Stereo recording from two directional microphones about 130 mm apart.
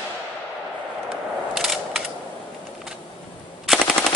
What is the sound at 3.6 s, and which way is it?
Machine gun, centre (ahead or behind).